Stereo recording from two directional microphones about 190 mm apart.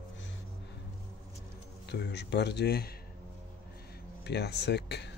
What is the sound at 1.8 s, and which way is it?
Speech, 65° left (ahead or behind).